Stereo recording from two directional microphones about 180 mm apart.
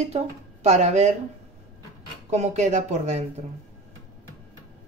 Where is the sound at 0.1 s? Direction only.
35° right (ahead or behind).